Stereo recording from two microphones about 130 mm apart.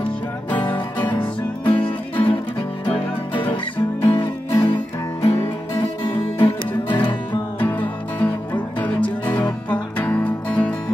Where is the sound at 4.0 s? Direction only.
20° left (ahead or behind).